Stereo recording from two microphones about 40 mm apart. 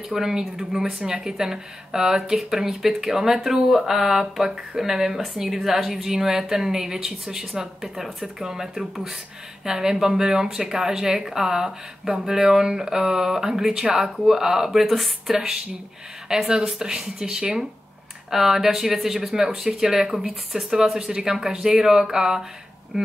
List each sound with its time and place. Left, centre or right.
0.1 s speech: centre
14.9 s a woman's voice: centre
15.3 s speech: centre
18.3 s speech: centre